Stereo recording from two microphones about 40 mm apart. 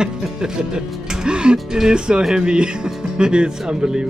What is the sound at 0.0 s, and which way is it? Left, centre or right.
Speech, centre.